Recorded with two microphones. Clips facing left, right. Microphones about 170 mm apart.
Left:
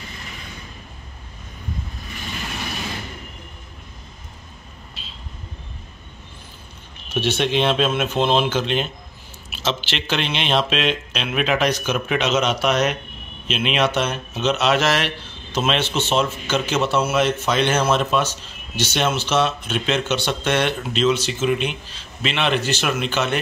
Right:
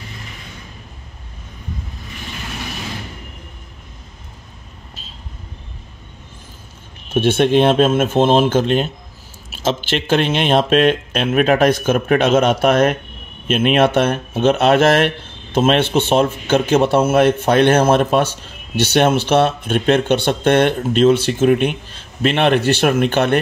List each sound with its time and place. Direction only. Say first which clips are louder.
7.1 s speech: right 7 dB; 50° right (ahead or behind)